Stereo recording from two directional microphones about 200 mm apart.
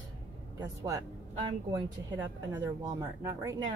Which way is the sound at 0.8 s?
20° right (ahead or behind).